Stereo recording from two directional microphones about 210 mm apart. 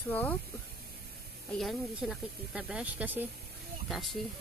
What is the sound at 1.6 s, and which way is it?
Speech, centre (ahead or behind).